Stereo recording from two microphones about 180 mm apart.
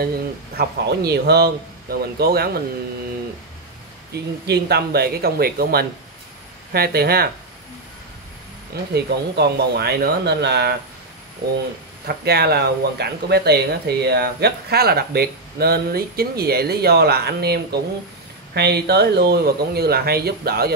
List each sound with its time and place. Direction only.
0.6 s speech: 65° right (ahead or behind)
4.1 s speech: 65° right (ahead or behind)
8.9 s speech: 65° right (ahead or behind)
12.1 s speech: 60° right (ahead or behind)